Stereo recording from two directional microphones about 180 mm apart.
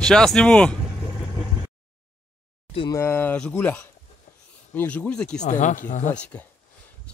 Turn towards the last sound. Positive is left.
turn(degrees=5)  # may be behind; listen again after turning